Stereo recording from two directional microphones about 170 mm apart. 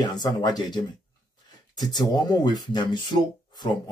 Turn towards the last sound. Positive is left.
turn(degrees=25)  # may be behind; listen again after turning